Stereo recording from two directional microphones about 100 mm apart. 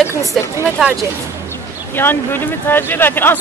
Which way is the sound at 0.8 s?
Centre (ahead or behind).